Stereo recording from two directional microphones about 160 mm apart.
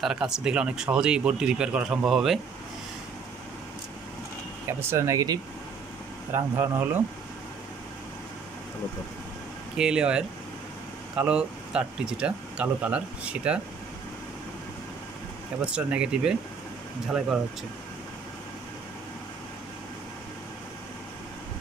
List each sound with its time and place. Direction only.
0.0 s speech: 5° right (ahead or behind)
4.6 s speech: 15° right (ahead or behind)
9.8 s speech: 5° right (ahead or behind)
15.6 s speech: 5° right (ahead or behind)